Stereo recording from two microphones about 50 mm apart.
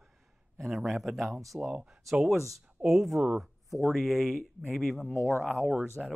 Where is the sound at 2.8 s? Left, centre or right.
Centre.